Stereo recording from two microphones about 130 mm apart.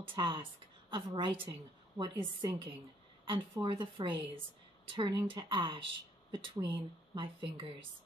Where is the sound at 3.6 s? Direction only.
35° right (ahead or behind).